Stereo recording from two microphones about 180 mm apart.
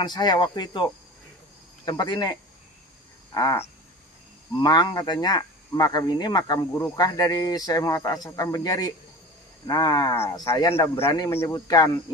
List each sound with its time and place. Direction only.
0.0 s speech: 25° left (ahead or behind)
1.9 s speech: 25° left (ahead or behind)
3.3 s speech: 20° left (ahead or behind)